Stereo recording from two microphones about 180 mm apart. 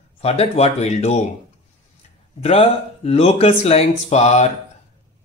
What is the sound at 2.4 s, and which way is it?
Speech, 35° left (ahead or behind).